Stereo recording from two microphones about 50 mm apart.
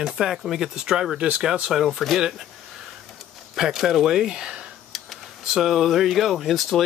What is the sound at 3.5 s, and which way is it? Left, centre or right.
Speech, centre.